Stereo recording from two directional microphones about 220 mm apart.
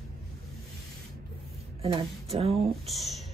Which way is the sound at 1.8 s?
25° right (ahead or behind).